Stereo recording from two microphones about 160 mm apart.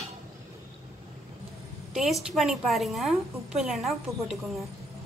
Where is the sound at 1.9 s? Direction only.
Centre (ahead or behind).